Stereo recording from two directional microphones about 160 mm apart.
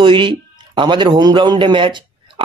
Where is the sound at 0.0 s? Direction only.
30° right (ahead or behind).